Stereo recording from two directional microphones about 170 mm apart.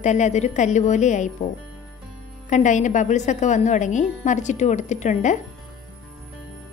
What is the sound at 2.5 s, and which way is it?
A woman's voice, 45° left (ahead or behind).